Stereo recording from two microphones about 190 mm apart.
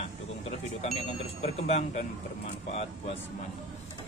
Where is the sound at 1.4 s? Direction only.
35° left (ahead or behind).